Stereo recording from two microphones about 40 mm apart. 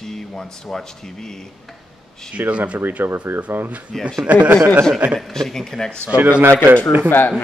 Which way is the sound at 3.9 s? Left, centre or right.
Centre.